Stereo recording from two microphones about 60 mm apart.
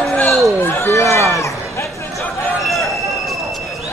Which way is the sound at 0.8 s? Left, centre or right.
Left.